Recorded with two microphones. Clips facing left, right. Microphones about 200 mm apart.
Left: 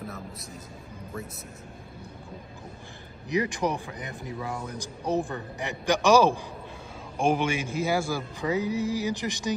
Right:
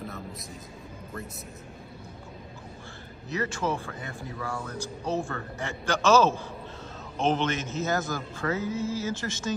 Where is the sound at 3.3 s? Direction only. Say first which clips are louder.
Left 3 dB; 15° left (ahead or behind).